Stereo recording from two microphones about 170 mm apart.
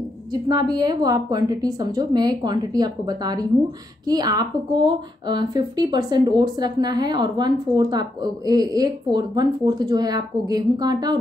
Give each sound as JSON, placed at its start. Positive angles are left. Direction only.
{"t": 0.3, "sound": "a woman's voice", "side_deg": -25}